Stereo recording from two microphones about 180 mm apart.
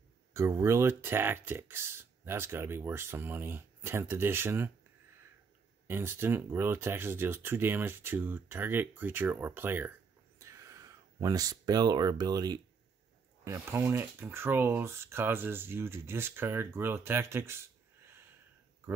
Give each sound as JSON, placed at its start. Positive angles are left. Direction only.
{"t": 0.3, "sound": "speech", "side_deg": -15}
{"t": 5.9, "sound": "speech", "side_deg": -10}
{"t": 10.4, "sound": "a sound", "side_deg": -15}
{"t": 13.4, "sound": "speech", "side_deg": -15}